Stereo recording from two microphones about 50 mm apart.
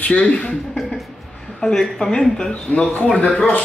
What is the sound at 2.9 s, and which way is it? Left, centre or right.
Speech, left.